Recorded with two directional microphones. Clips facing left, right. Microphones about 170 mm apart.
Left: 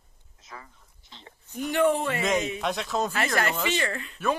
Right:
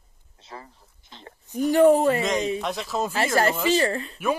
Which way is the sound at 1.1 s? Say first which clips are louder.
Right 4 dB; 50° right (ahead or behind).